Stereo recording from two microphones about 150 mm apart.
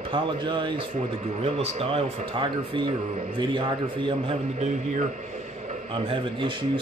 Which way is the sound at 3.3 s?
35° right (ahead or behind).